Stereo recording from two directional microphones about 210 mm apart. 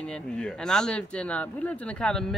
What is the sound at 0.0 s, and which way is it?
Speech, 5° left (ahead or behind).